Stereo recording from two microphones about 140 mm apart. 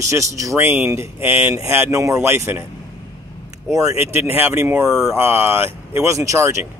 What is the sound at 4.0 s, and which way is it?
Speech, 15° right (ahead or behind).